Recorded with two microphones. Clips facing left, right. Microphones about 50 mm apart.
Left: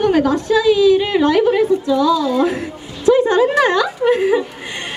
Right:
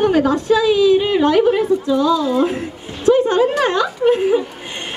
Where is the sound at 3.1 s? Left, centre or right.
Right.